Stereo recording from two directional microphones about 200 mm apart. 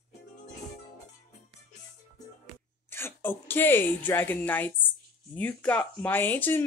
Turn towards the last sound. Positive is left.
turn(degrees=10)  # may be behind; listen again after turning